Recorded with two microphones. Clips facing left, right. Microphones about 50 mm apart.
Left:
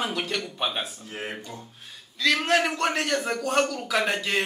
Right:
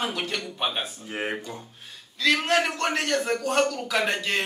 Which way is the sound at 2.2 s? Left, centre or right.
Centre.